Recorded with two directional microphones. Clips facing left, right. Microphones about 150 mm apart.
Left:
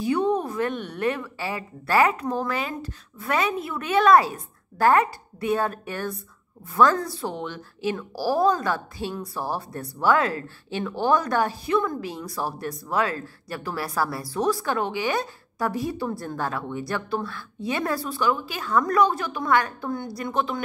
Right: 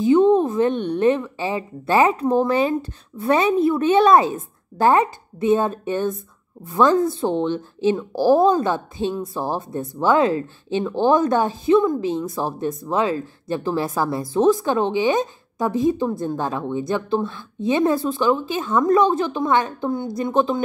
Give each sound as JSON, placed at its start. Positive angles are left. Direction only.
{"t": 0.0, "sound": "a woman's voice", "side_deg": -20}